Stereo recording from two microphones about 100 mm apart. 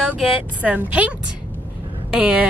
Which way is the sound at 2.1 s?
10° right (ahead or behind).